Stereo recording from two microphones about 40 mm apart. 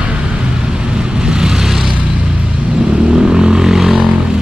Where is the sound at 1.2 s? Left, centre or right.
Centre.